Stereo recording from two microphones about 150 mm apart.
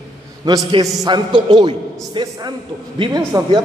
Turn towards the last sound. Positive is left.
turn(degrees=-25)  # may be behind; listen again after turning